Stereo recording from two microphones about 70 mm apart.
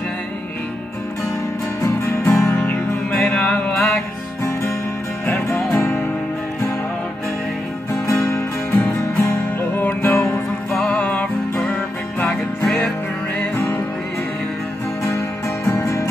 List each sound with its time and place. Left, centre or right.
1.8 s music: left; by 4.0 s centre
5.2 s music: left
7.9 s music: left
8.7 s music: left
10.8 s music: centre
12.6 s music: left
15.0 s music: left